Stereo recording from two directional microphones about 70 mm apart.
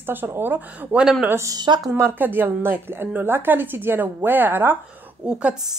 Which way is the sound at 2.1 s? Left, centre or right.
Right.